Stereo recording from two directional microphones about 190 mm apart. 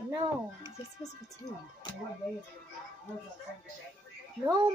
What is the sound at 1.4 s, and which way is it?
Speech, 20° left (ahead or behind).